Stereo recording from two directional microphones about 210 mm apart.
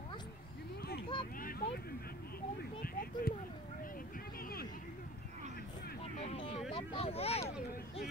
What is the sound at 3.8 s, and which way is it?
Vehicle, 40° left (ahead or behind).